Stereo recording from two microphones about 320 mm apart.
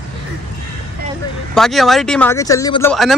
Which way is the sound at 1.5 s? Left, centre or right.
Centre.